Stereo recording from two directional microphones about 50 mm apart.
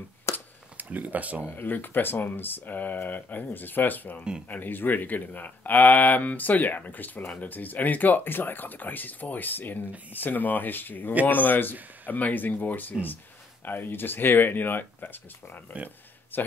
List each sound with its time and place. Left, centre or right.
0.3 s a sound: left
0.7 s speech: right
1.5 s speech: left
16.3 s speech: left